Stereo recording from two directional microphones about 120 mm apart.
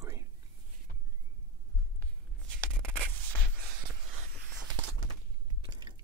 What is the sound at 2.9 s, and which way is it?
Scratch, 15° left (ahead or behind).